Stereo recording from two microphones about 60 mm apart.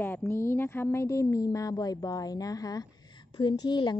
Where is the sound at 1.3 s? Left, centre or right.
Left.